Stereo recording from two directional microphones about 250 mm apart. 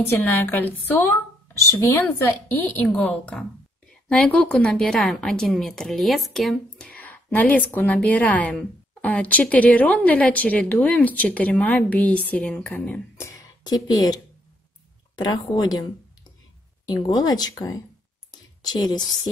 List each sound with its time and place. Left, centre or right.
0.0 s a woman's voice: centre
16.8 s a woman's voice: centre